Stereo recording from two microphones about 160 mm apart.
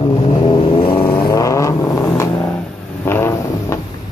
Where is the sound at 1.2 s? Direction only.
20° left (ahead or behind).